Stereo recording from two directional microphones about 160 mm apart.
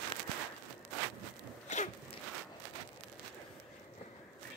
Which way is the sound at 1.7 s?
50° left (ahead or behind).